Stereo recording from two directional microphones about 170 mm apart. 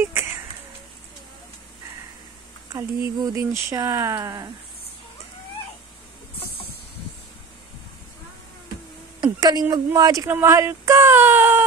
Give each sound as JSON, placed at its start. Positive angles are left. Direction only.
{"t": 0.0, "sound": "a sound", "side_deg": -15}
{"t": 3.2, "sound": "speech", "side_deg": -20}
{"t": 9.2, "sound": "speech", "side_deg": -25}